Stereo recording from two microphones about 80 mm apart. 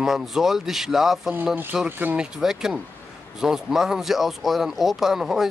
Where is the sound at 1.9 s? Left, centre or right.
Right.